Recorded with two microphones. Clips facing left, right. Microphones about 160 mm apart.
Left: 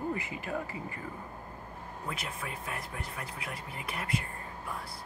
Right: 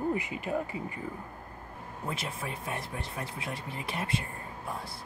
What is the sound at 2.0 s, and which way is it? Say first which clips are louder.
Speech: right 3 dB; 30° right (ahead or behind).